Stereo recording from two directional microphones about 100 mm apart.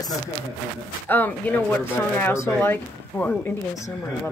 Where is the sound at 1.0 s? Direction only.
20° left (ahead or behind).